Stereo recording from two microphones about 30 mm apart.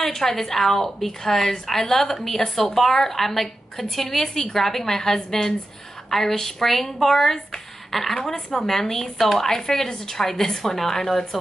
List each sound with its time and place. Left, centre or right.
0.0 s a woman's voice: centre